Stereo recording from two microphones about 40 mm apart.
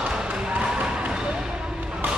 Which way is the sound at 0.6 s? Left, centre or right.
Centre.